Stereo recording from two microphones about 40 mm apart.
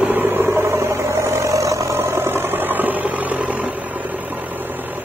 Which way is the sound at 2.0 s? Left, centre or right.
Right.